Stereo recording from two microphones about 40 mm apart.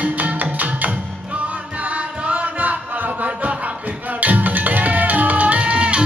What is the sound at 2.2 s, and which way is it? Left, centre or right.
Chant, right.